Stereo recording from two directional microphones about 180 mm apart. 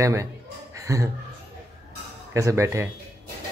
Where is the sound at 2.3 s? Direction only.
15° right (ahead or behind).